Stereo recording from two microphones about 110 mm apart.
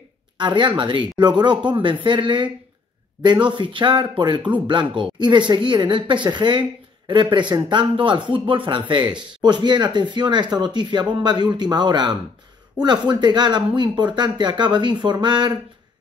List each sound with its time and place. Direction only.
0.4 s speech: 45° right (ahead or behind)